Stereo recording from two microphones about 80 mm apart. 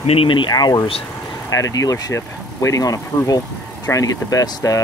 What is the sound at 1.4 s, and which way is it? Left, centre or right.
Speech, left.